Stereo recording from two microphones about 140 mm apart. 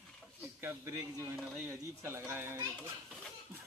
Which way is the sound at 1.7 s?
20° right (ahead or behind).